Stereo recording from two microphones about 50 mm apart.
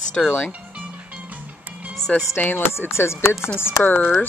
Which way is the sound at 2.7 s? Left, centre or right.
Left.